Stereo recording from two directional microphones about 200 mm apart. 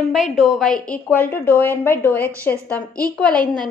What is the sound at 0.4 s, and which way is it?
A woman's voice, centre (ahead or behind).